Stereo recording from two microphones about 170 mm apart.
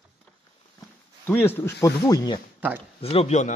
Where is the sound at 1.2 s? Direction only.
10° left (ahead or behind).